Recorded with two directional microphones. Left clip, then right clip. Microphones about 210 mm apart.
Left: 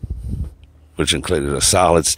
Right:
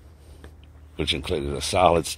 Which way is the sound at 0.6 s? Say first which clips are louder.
Left 7 dB; 40° left (ahead or behind).